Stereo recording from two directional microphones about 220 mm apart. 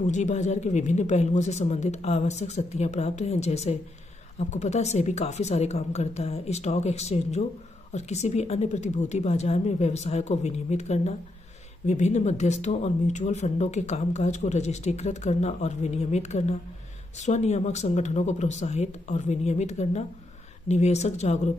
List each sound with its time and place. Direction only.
0.0 s a woman's voice: 35° left (ahead or behind)